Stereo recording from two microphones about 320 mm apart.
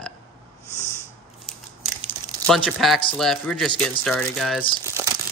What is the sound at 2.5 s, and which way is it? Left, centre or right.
Speech, centre.